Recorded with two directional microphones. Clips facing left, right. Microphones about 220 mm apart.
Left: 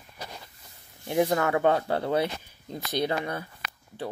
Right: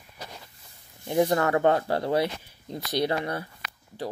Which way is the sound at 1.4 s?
20° right (ahead or behind).